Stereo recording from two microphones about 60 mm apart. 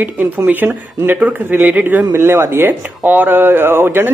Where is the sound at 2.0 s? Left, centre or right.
Right.